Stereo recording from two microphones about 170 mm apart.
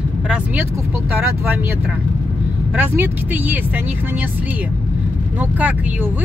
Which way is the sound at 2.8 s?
10° right (ahead or behind).